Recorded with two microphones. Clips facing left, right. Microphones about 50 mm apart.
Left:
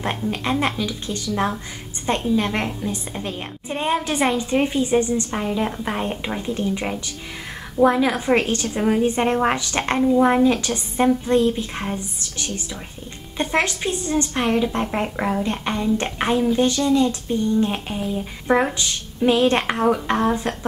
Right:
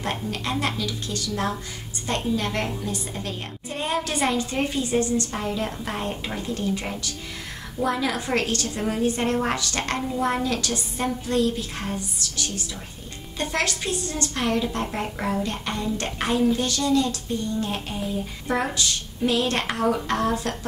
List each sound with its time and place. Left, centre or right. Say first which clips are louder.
0.0 s a woman's voice: left 4 dB; left